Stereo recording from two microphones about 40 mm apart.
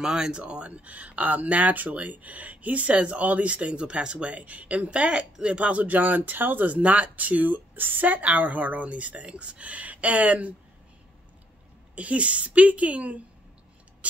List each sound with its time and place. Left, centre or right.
0.0 s speech: centre
4.3 s speech: right
6.6 s speech: right
11.9 s speech: right